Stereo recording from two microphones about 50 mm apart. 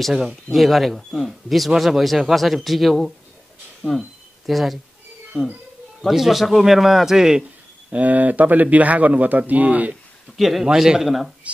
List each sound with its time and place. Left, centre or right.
0.5 s a man's voice: centre
3.8 s speech: right
4.5 s a man's voice: centre
7.9 s speech: right
10.3 s a man's voice: centre